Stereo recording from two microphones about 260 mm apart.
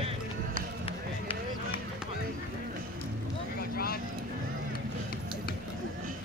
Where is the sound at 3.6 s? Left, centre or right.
Left.